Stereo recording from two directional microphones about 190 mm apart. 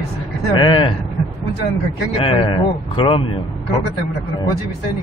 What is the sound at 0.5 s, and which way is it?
Speech, 25° left (ahead or behind).